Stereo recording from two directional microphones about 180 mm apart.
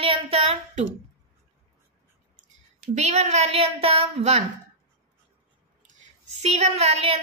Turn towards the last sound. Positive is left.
turn(degrees=-35)  # may be behind; listen again after turning